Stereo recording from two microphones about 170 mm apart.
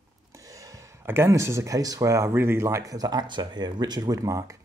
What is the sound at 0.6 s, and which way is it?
Speech, 15° right (ahead or behind).